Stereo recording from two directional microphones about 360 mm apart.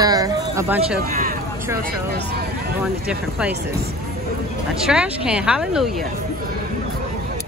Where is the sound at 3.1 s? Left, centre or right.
Centre.